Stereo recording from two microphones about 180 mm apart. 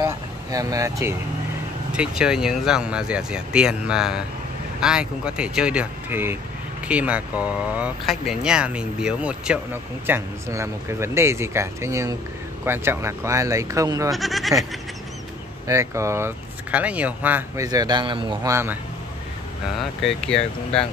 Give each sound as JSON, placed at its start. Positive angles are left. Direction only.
{"t": 0.0, "sound": "vehicle", "side_deg": -20}
{"t": 1.9, "sound": "speech", "side_deg": -5}
{"t": 14.1, "sound": "speech", "side_deg": 0}
{"t": 15.6, "sound": "speech", "side_deg": -15}
{"t": 18.5, "sound": "speech", "side_deg": -15}
{"t": 19.8, "sound": "speech", "side_deg": 0}